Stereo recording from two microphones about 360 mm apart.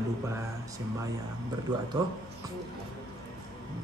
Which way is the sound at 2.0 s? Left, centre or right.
Centre.